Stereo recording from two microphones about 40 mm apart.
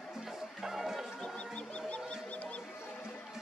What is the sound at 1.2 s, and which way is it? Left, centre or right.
Music, left.